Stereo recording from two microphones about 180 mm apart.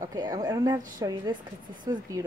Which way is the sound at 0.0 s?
20° right (ahead or behind).